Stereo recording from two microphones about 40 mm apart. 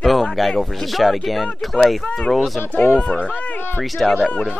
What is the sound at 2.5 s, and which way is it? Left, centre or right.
Speech, left.